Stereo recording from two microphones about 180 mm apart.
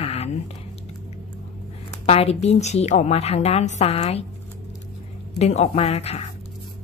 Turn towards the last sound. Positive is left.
turn(degrees=35)  # may be behind; listen again after turning